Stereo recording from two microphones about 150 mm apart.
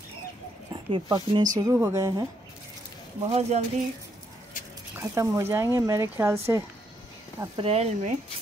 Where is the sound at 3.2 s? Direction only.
45° right (ahead or behind).